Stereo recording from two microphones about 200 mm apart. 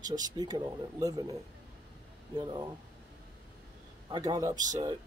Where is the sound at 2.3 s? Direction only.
25° right (ahead or behind).